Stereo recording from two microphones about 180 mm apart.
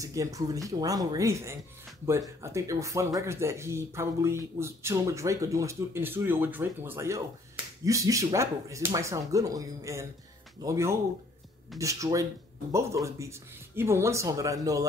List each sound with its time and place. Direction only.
0.0 s speech: 20° right (ahead or behind)